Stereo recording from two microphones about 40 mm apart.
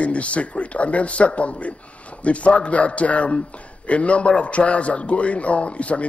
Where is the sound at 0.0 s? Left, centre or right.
Left.